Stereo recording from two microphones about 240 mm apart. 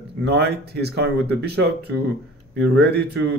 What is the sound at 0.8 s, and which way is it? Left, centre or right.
A man's voice, right.